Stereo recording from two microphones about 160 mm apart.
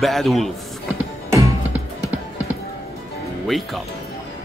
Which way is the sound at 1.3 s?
20° right (ahead or behind).